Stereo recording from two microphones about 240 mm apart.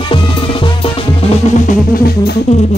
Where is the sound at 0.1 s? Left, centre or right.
Left.